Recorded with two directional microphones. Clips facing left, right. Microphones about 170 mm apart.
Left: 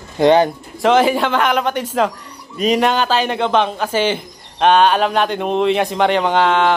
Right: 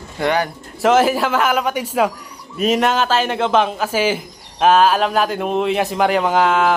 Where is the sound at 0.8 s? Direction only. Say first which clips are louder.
Left 1 dB; 5° right (ahead or behind).